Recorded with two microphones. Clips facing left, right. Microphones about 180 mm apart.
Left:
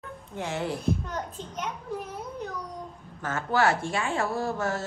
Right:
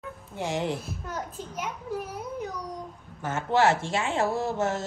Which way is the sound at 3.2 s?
20° right (ahead or behind).